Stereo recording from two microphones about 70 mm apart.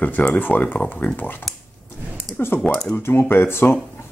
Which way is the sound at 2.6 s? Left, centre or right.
Centre.